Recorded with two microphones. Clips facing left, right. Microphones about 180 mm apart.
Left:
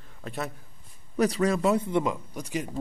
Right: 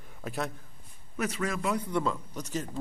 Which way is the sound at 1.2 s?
35° left (ahead or behind).